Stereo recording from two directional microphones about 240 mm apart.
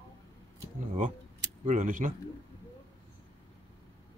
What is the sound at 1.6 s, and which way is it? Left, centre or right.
Speech, right.